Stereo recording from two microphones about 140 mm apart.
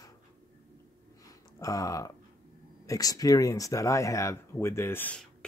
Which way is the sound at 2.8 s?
25° left (ahead or behind).